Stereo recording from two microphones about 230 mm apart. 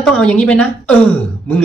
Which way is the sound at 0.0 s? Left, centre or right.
Centre.